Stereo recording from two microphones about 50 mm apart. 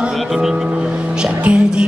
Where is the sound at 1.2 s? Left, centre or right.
Centre.